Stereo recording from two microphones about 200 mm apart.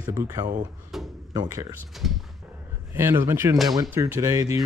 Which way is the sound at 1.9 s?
Centre (ahead or behind).